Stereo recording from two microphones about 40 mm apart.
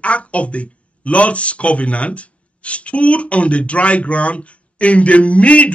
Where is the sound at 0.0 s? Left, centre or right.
Left.